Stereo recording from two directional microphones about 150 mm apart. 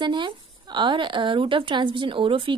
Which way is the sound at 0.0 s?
30° right (ahead or behind).